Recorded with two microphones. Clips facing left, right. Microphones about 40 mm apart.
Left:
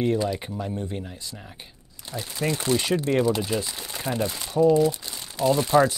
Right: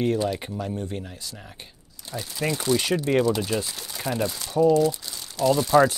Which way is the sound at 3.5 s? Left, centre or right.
Centre.